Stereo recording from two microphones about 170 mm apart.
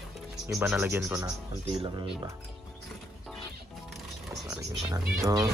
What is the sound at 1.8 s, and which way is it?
Speech, 25° right (ahead or behind).